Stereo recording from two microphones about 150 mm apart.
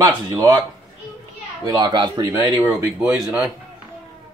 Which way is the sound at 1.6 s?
25° right (ahead or behind).